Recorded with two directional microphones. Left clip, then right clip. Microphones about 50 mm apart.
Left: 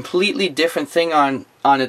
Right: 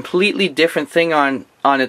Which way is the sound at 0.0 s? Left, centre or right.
Right.